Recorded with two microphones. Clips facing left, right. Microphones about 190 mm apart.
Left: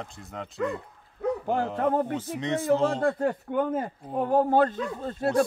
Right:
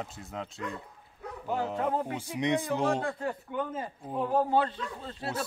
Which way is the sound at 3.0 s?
50° left (ahead or behind).